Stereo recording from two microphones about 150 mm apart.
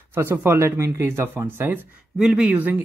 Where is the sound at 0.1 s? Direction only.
15° right (ahead or behind).